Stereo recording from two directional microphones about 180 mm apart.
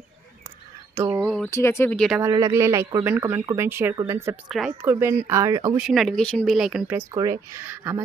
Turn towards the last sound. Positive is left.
turn(degrees=-10)  # may be behind; listen again after turning